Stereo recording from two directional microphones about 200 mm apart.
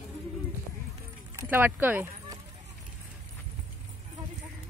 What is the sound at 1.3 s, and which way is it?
Speech, 10° right (ahead or behind).